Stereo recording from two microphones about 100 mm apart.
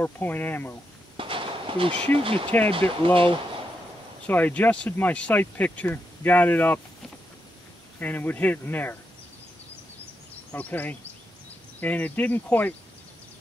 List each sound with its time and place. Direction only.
0.0 s speech: 20° left (ahead or behind)
1.1 s a sound: 60° right (ahead or behind)
2.1 s speech: 65° right (ahead or behind)
4.3 s speech: 15° left (ahead or behind)
8.0 s speech: 20° left (ahead or behind)
10.5 s speech: 15° left (ahead or behind)